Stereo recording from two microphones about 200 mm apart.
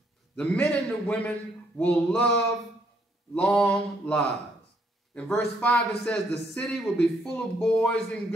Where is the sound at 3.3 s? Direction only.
5° left (ahead or behind).